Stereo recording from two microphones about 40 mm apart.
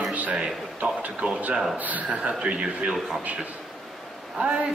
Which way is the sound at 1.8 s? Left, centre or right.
Right.